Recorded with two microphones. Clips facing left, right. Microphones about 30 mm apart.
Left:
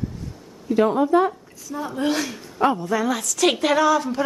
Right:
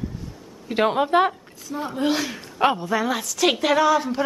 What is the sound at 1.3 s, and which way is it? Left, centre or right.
Speech, right.